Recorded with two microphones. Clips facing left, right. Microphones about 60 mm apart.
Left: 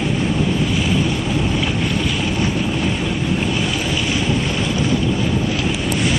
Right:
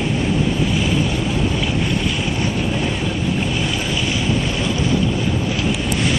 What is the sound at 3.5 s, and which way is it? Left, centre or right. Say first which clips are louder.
Boat: left 1 dB; left.